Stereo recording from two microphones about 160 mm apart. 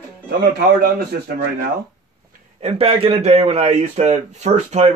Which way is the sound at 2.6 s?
40° right (ahead or behind).